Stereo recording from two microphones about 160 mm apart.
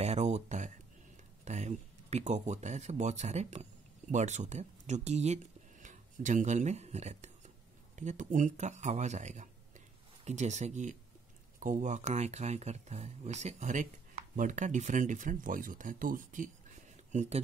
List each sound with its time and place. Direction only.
0.0 s a sound: 45° right (ahead or behind)
1.4 s speech: 45° right (ahead or behind)
17.1 s speech: 45° right (ahead or behind)